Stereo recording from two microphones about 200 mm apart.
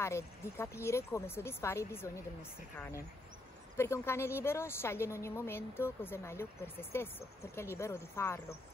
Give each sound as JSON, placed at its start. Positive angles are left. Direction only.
{"t": 0.0, "sound": "a woman's voice", "side_deg": 15}
{"t": 3.7, "sound": "a woman's voice", "side_deg": 15}